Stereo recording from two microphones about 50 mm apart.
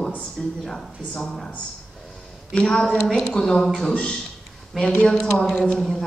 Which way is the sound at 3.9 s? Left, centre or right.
Left.